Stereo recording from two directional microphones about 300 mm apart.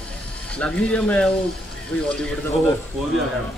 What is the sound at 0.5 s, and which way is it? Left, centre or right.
Speech, centre.